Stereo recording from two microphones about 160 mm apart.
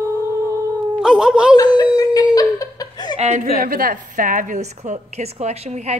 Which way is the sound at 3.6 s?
65° right (ahead or behind).